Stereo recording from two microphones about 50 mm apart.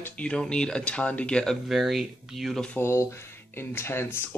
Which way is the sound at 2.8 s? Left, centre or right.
Left.